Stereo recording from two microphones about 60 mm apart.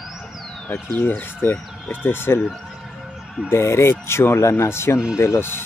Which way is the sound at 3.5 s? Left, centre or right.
Left.